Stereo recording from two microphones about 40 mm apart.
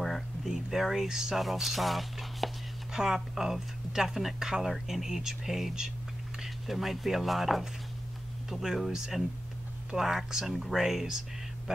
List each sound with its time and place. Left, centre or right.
0.5 s speech: centre
1.3 s speech: centre
2.9 s speech: centre